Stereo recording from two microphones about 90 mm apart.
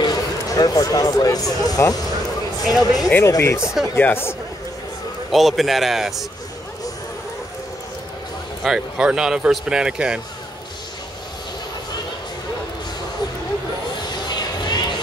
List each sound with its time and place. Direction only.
0.0 s a sound: 45° left (ahead or behind)
1.7 s speech: 45° left (ahead or behind)
3.3 s speech: 35° left (ahead or behind)
3.6 s a man's voice: centre (ahead or behind)
3.9 s speech: 25° left (ahead or behind)
5.3 s a man's voice: centre (ahead or behind)
8.6 s speech: 5° right (ahead or behind)
14.2 s a sound: 50° left (ahead or behind)